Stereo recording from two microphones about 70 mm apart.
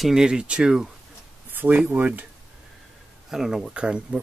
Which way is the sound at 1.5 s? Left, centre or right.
Right.